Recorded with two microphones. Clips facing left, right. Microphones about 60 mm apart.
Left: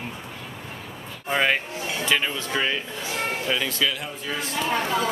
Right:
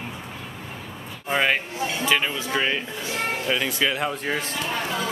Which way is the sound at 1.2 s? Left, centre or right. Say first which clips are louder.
Even; centre.